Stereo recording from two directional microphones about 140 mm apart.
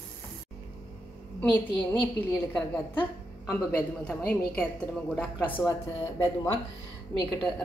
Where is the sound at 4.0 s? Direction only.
5° left (ahead or behind).